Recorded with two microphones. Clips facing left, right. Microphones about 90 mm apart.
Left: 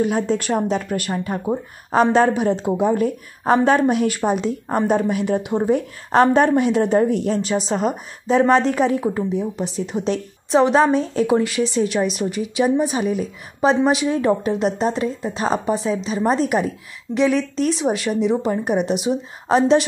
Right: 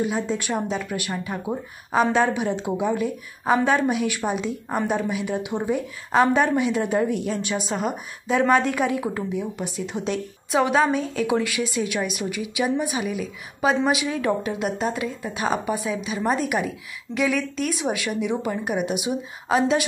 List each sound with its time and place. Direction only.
0.0 s speech: 45° left (ahead or behind)
2.6 s speech: 45° left (ahead or behind)
6.8 s a woman's voice: 35° left (ahead or behind)